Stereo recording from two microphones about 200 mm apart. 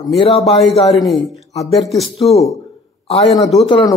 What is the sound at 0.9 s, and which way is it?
Speech, centre (ahead or behind).